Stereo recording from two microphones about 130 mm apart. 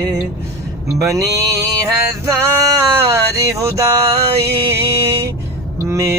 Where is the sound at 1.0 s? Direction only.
25° right (ahead or behind).